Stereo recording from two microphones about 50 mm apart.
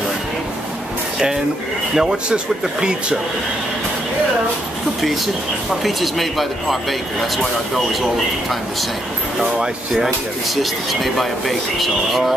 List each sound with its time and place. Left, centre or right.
2.0 s speech: centre
5.9 s speech: centre
9.4 s speech: centre